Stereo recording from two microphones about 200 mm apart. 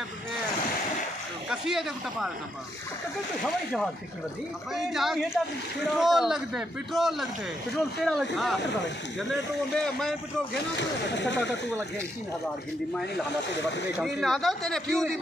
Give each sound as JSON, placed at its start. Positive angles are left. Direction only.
{"t": 1.5, "sound": "a man's voice", "side_deg": 0}
{"t": 3.4, "sound": "a man's voice", "side_deg": 0}
{"t": 9.3, "sound": "a man's voice", "side_deg": 0}
{"t": 10.5, "sound": "speech", "side_deg": 60}
{"t": 13.9, "sound": "a man's voice", "side_deg": 0}